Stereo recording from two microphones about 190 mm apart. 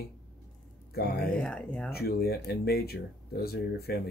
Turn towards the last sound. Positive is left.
turn(degrees=55)  # may be behind; listen again after turning